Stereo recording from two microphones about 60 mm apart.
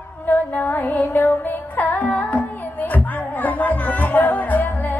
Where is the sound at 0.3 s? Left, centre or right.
Left.